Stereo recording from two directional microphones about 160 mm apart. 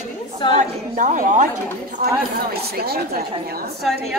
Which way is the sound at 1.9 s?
65° right (ahead or behind).